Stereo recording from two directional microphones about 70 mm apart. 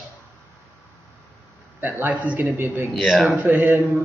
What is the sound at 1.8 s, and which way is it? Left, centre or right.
Speech, right.